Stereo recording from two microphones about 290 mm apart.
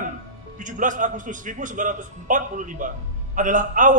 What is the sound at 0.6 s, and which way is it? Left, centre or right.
A man's voice, right.